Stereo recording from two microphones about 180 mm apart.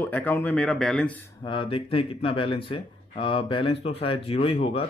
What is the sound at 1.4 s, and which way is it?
Speech, 30° left (ahead or behind).